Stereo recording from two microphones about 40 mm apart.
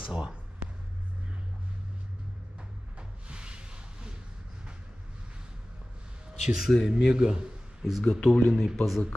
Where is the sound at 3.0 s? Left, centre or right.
Right.